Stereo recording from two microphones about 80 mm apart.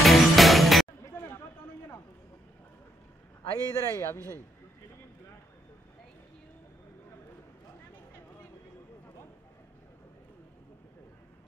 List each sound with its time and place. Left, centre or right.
0.0 s music: centre
3.4 s a man's voice: left